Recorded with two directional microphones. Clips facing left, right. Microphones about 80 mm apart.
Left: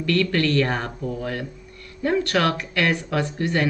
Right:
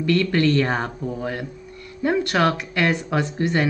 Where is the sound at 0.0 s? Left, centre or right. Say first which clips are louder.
Right 2 dB; centre.